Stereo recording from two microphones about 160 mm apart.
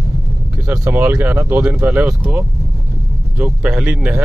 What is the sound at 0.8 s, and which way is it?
Speech, 15° right (ahead or behind).